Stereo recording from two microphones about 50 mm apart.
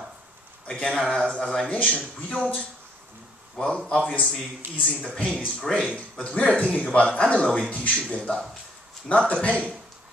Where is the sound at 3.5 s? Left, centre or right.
Centre.